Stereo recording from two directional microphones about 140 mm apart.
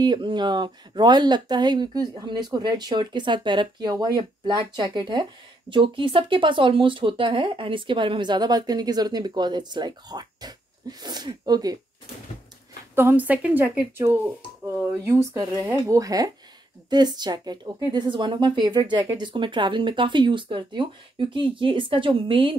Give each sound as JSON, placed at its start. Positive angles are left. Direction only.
{"t": 0.0, "sound": "speech", "side_deg": -30}
{"t": 12.9, "sound": "a woman's voice", "side_deg": -15}